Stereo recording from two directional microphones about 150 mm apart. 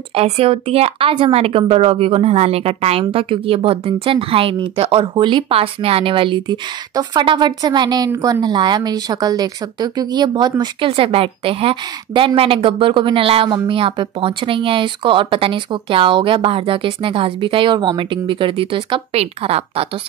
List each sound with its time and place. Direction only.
0.1 s a woman's voice: 40° right (ahead or behind)